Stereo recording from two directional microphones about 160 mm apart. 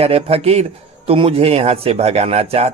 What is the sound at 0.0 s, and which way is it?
A man's voice, 40° right (ahead or behind).